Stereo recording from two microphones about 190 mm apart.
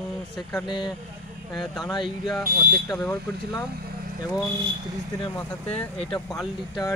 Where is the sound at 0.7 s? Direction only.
20° left (ahead or behind).